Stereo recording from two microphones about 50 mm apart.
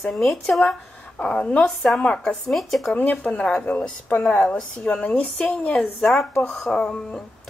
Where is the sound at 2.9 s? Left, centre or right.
Left.